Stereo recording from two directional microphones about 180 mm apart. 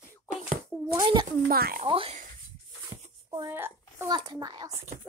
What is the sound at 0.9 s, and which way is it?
Speech, 25° right (ahead or behind).